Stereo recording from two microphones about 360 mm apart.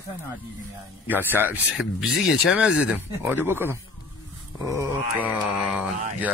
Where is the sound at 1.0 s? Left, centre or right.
Centre.